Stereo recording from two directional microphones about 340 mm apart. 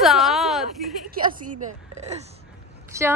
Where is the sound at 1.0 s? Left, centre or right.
Right.